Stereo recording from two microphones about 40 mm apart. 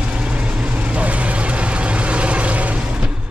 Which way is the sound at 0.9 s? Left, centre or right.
Right.